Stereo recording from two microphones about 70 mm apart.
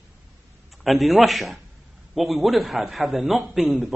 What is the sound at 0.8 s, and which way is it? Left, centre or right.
A man's voice, centre.